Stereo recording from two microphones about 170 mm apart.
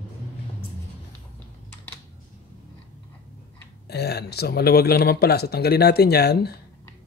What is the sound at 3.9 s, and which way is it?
Speech, 70° left (ahead or behind).